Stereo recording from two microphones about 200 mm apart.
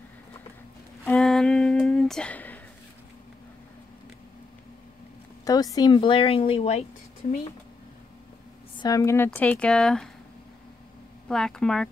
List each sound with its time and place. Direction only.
1.0 s a sound: 5° left (ahead or behind)
5.4 s speech: 20° left (ahead or behind)
7.2 s speech: 45° left (ahead or behind)
8.7 s speech: 15° left (ahead or behind)
11.2 s speech: 5° left (ahead or behind)